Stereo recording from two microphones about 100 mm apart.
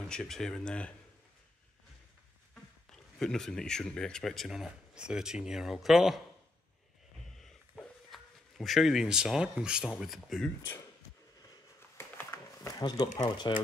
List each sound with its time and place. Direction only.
0.1 s speech: 5° left (ahead or behind)
2.5 s speech: 5° left (ahead or behind)
7.3 s a sound: 5° left (ahead or behind)
8.1 s speech: centre (ahead or behind)
12.0 s a sound: 25° left (ahead or behind)
12.8 s speech: 45° left (ahead or behind)